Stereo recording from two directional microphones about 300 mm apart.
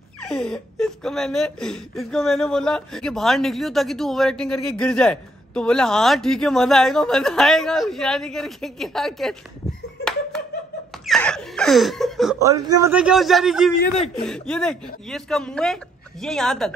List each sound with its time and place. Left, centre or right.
0.2 s speech: centre
11.1 s laughter: centre
12.4 s speech: centre
13.7 s a man's voice: left
14.2 s speech: centre